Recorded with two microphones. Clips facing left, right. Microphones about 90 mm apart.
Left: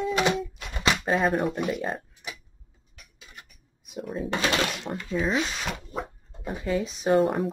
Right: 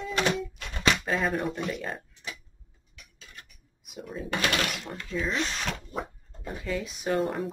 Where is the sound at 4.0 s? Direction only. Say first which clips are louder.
Left 5 dB; centre (ahead or behind).